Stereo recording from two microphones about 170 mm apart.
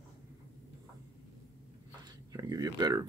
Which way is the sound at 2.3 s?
20° right (ahead or behind).